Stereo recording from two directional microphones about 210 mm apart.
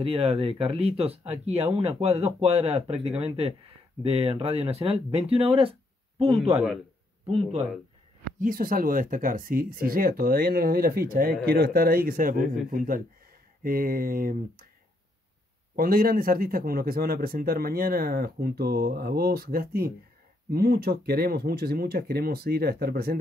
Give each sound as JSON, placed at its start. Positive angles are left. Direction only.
{"t": 0.0, "sound": "speech", "side_deg": -30}
{"t": 8.4, "sound": "speech", "side_deg": -40}
{"t": 15.7, "sound": "speech", "side_deg": -45}